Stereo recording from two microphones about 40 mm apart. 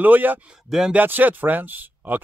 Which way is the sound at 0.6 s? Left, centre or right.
Centre.